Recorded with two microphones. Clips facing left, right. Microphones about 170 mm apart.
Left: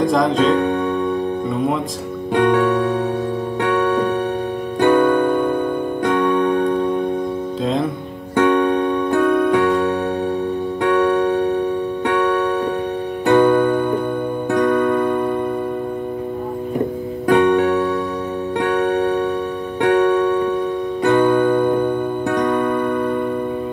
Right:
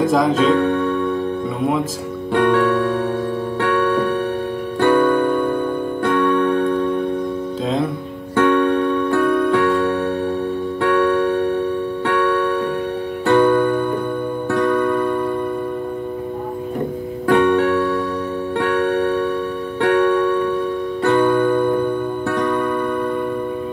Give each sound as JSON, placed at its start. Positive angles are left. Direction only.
{"t": 0.0, "sound": "speech", "side_deg": -5}
{"t": 0.6, "sound": "music", "side_deg": 15}
{"t": 2.3, "sound": "music", "side_deg": 15}
{"t": 7.6, "sound": "music", "side_deg": 0}
{"t": 8.4, "sound": "music", "side_deg": 15}
{"t": 12.1, "sound": "electric piano", "side_deg": 15}
{"t": 13.2, "sound": "music", "side_deg": 15}
{"t": 17.3, "sound": "music", "side_deg": 15}